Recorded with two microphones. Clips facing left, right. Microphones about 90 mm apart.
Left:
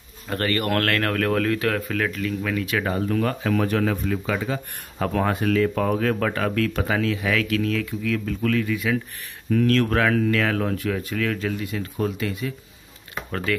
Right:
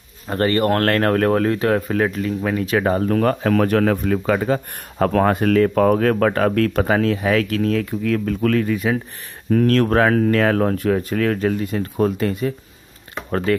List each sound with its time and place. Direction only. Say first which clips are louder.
0.3 s speech: right 6 dB; 30° right (ahead or behind)